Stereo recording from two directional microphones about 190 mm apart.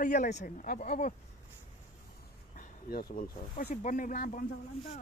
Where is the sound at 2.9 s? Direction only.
50° left (ahead or behind).